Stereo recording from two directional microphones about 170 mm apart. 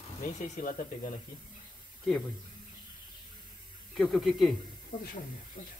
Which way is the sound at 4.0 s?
Centre (ahead or behind).